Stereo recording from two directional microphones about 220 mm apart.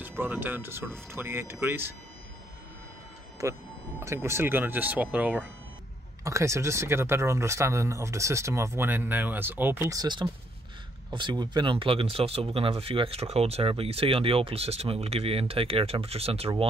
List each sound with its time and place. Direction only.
0.0 s speech: 10° right (ahead or behind)
3.4 s speech: 15° right (ahead or behind)